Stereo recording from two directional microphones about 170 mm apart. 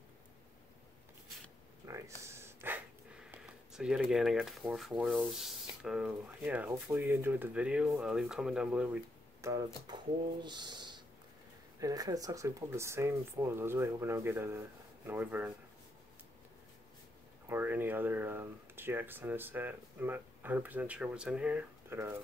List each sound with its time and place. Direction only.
1.9 s a sound: 15° right (ahead or behind)
3.3 s speech: 5° right (ahead or behind)
17.5 s speech: 10° right (ahead or behind)